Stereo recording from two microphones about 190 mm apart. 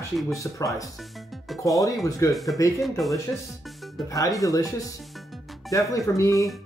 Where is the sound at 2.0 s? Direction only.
15° left (ahead or behind).